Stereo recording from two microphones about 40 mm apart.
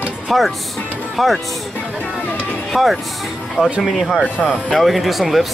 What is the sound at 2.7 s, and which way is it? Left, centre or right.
Speech, centre.